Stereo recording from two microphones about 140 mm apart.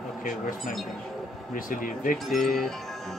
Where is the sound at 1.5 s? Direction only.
75° left (ahead or behind).